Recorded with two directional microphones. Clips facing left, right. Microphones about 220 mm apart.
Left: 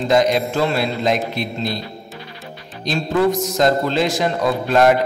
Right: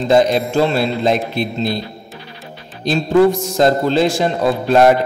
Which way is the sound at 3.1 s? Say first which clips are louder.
Right 5 dB; 30° right (ahead or behind).